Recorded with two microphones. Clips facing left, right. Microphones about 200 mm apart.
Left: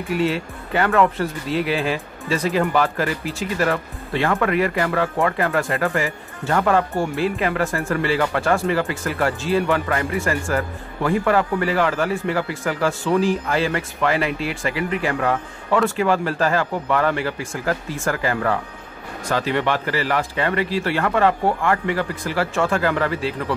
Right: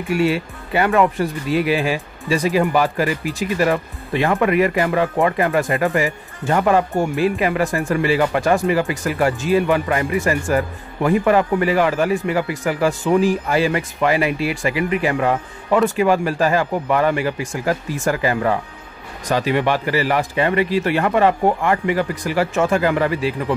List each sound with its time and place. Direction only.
0.1 s speech: 10° right (ahead or behind)